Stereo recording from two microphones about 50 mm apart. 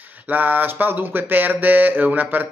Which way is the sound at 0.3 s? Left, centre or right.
Right.